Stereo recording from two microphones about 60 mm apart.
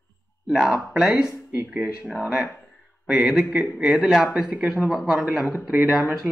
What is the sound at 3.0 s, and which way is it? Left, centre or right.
A man's voice, right.